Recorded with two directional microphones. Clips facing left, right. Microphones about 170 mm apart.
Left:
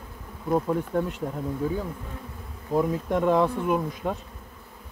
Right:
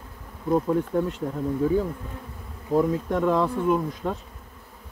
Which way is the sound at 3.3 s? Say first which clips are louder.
Even; 10° left (ahead or behind).